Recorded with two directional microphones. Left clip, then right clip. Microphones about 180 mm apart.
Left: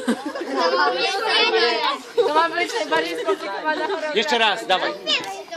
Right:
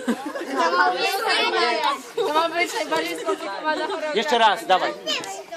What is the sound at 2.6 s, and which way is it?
Speech, 45° right (ahead or behind).